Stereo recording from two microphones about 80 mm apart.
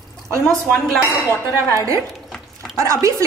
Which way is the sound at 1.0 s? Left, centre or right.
Left.